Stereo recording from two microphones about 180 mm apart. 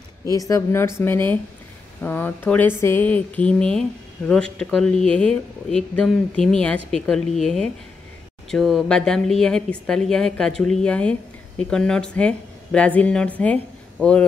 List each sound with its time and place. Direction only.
0.3 s a woman's voice: 20° left (ahead or behind)